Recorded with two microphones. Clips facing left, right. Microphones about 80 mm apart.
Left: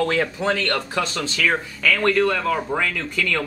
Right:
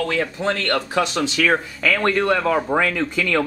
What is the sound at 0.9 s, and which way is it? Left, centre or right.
Speech, centre.